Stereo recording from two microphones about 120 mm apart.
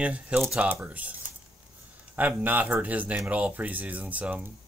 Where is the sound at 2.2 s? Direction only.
15° right (ahead or behind).